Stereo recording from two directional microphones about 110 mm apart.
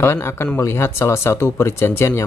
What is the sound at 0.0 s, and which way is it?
Speech, 25° left (ahead or behind).